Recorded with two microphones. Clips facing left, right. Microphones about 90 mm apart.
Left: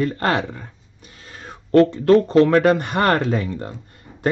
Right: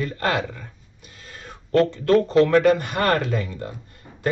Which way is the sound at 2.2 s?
35° left (ahead or behind).